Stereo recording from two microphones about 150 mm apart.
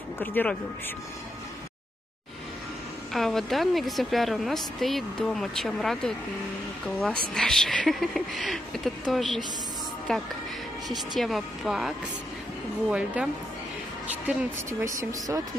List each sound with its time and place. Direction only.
0.2 s speech: 10° left (ahead or behind)
3.1 s a woman's voice: centre (ahead or behind)
11.1 s a woman's voice: centre (ahead or behind)
12.9 s a woman's voice: 10° right (ahead or behind)